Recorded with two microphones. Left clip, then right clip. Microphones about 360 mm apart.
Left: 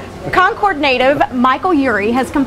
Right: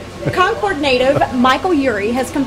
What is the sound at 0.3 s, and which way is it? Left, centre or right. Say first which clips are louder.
Speech: left 3 dB; left.